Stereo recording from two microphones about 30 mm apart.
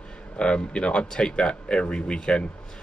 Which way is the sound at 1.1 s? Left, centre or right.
Left.